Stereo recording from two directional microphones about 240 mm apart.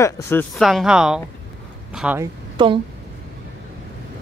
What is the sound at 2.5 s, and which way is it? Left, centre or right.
Speech, right.